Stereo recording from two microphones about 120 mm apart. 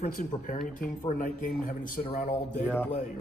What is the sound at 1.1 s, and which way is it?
A man's voice, 90° left.